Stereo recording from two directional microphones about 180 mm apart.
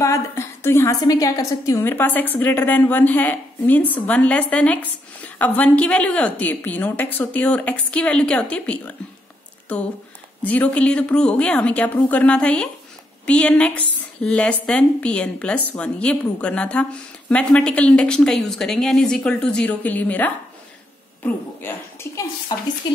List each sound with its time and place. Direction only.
0.0 s a woman's voice: 15° left (ahead or behind)
10.4 s a woman's voice: 10° left (ahead or behind)
22.5 s stir: 20° left (ahead or behind)